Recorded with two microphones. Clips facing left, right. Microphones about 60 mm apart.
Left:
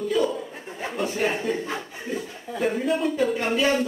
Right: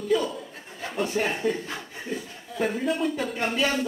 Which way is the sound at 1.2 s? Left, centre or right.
Centre.